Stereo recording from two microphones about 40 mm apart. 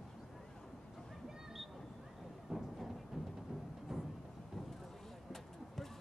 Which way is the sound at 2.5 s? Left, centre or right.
Right.